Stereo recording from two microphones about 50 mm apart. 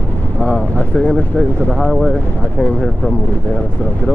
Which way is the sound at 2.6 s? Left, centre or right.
Centre.